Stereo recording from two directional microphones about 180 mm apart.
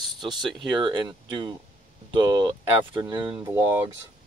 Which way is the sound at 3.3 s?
10° right (ahead or behind).